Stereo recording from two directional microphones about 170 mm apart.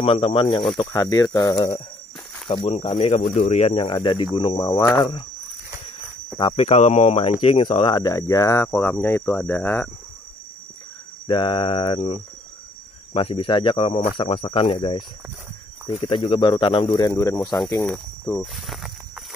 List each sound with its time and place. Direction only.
0.0 s speech: 35° left (ahead or behind)
0.7 s speech: 20° left (ahead or behind)
2.4 s speech: 35° left (ahead or behind)
4.6 s speech: 15° left (ahead or behind)
4.9 s speech: 25° left (ahead or behind)
6.5 s speech: 40° left (ahead or behind); by 9.8 s 10° left (ahead or behind)
11.2 s speech: 30° left (ahead or behind)
16.9 s speech: 20° left (ahead or behind)
17.8 s snake: 5° left (ahead or behind)